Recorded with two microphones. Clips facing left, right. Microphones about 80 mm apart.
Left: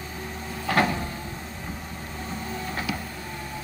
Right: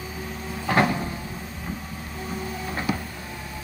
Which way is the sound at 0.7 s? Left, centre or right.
Centre.